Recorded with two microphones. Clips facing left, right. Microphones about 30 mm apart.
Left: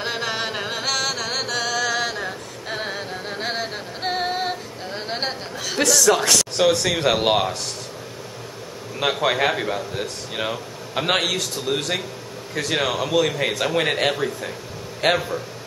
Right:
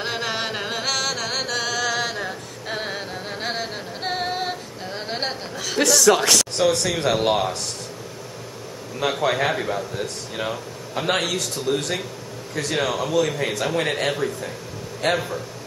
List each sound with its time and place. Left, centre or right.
0.0 s music: centre
6.9 s speech: centre
9.2 s a man's voice: centre